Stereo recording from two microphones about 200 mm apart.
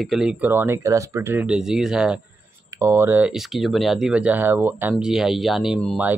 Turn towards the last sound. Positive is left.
turn(degrees=0)  # may be behind; listen again after turning